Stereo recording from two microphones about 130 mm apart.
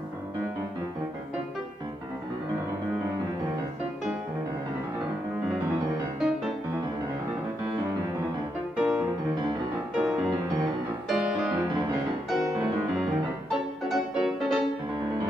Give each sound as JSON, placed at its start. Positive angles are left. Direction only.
{"t": 8.7, "sound": "music", "side_deg": -5}